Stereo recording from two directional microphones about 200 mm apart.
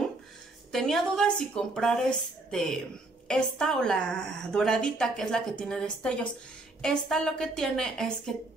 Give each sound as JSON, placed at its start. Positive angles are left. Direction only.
{"t": 0.7, "sound": "a woman's voice", "side_deg": 0}